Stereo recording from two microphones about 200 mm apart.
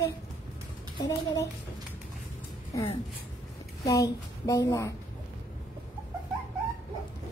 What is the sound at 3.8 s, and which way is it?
Speech, 15° left (ahead or behind).